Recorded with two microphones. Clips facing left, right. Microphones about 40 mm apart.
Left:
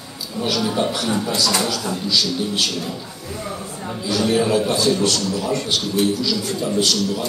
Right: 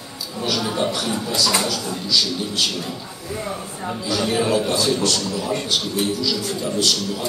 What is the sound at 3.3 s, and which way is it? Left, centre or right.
A man's voice, centre.